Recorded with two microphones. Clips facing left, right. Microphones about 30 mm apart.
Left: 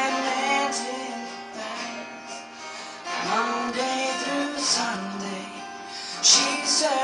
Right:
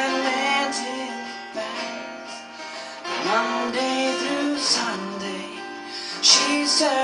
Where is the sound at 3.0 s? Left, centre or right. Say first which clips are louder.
Right 3 dB; right.